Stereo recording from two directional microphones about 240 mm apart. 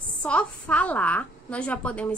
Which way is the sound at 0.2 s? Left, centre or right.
Centre.